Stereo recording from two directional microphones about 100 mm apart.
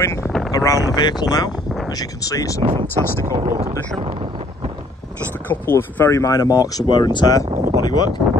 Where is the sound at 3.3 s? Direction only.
90° right.